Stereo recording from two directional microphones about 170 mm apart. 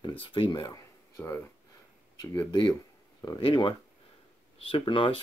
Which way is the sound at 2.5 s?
25° left (ahead or behind).